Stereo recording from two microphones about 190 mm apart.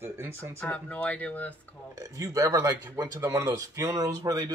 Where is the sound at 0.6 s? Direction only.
5° left (ahead or behind).